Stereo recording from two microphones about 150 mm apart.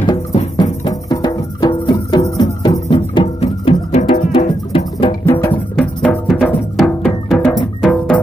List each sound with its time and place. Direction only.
0.0 s music: 35° left (ahead or behind)
2.9 s music: 40° left (ahead or behind)
5.2 s music: 15° left (ahead or behind)